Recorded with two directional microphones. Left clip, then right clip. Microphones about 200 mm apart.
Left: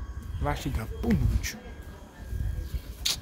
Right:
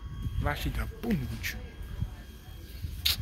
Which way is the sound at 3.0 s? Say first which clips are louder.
Right 1 dB; 10° left (ahead or behind).